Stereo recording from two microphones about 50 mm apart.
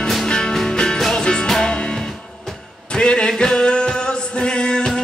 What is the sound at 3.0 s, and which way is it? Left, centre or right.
Music, centre.